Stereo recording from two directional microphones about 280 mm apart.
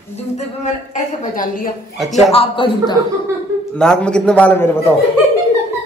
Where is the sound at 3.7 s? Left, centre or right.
Centre.